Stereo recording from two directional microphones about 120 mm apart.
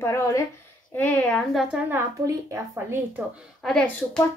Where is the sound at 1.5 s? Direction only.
10° right (ahead or behind).